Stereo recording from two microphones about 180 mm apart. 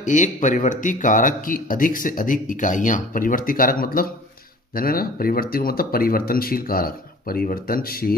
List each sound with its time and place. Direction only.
0.0 s speech: 45° left (ahead or behind)